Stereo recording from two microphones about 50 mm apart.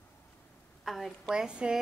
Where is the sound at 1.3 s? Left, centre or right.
Centre.